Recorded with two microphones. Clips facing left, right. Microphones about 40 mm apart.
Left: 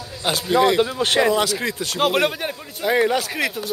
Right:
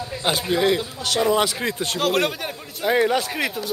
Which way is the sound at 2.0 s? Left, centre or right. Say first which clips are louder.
Left 3 dB; centre.